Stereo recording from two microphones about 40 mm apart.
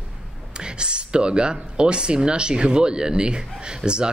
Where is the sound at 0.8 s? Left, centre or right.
Right.